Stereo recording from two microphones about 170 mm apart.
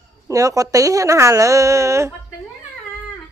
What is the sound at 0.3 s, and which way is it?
Speech, 20° right (ahead or behind).